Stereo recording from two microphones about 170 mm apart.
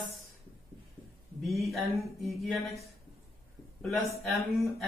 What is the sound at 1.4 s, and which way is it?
Speech, centre (ahead or behind).